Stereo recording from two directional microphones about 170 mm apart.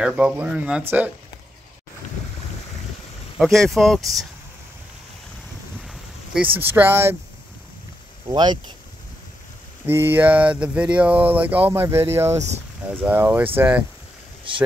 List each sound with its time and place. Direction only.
0.0 s speech: 5° right (ahead or behind)
3.3 s speech: centre (ahead or behind)
5.9 s a sound: 5° right (ahead or behind)
6.6 s speech: 15° right (ahead or behind)
8.3 s speech: 25° right (ahead or behind)
9.8 s speech: 10° right (ahead or behind)
12.4 s speech: 40° right (ahead or behind)
12.9 s speech: 10° right (ahead or behind)
14.5 s speech: 30° right (ahead or behind)